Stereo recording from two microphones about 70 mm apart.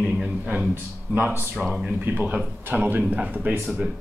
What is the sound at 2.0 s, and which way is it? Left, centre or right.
Speech, right.